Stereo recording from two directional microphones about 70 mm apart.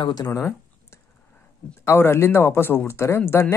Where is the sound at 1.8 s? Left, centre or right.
Left.